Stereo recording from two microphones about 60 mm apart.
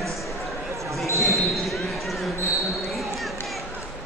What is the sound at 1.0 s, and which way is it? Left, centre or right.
Basketball bounce, left.